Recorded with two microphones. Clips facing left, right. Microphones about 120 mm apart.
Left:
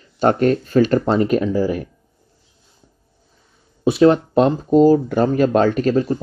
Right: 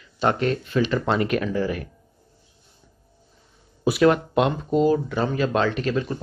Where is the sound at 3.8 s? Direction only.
30° left (ahead or behind).